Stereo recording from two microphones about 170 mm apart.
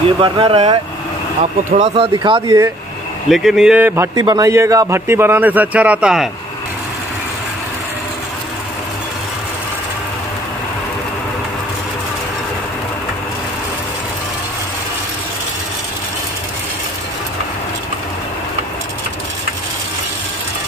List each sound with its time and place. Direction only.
0.2 s speech: 30° right (ahead or behind)
1.4 s speech: 45° right (ahead or behind)
2.0 s speech: 30° right (ahead or behind)
3.3 s a man's voice: centre (ahead or behind)